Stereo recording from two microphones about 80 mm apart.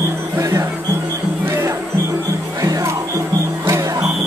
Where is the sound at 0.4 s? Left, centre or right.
Right.